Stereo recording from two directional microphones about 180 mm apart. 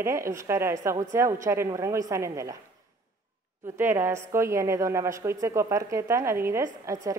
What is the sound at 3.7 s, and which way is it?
A woman's voice, 15° right (ahead or behind).